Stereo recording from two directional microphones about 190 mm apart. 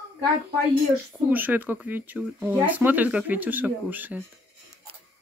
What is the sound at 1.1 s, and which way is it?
Speech, 10° right (ahead or behind).